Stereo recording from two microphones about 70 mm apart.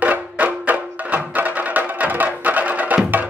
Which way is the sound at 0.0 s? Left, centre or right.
Right.